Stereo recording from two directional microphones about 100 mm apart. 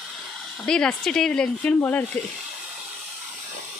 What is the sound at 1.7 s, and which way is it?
Speech, 20° left (ahead or behind).